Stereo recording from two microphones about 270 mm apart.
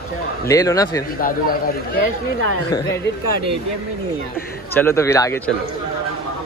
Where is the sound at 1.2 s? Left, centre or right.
Left.